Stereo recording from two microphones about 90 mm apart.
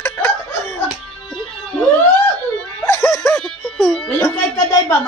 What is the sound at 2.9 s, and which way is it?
Music, 35° left (ahead or behind).